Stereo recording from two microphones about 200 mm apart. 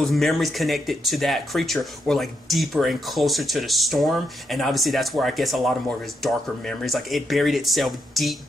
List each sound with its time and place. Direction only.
0.0 s speech: centre (ahead or behind)